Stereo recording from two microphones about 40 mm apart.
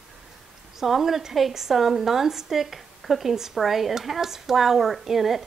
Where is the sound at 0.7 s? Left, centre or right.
Centre.